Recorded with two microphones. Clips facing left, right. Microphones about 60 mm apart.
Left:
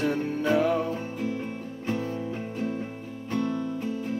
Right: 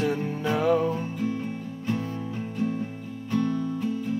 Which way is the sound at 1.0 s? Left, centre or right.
Centre.